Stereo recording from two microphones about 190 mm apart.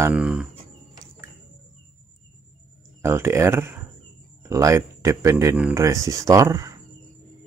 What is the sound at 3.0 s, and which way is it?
Speech, 15° right (ahead or behind).